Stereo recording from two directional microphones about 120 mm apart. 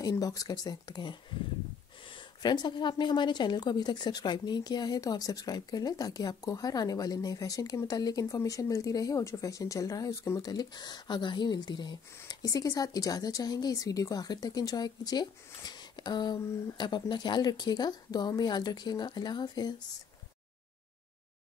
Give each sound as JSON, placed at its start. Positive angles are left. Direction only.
{"t": 0.0, "sound": "a woman's voice", "side_deg": 30}